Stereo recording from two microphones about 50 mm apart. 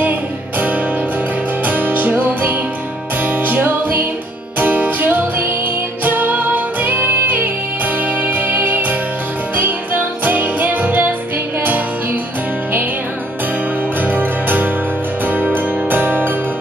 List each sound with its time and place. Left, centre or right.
0.0 s music: right
14.0 s music: right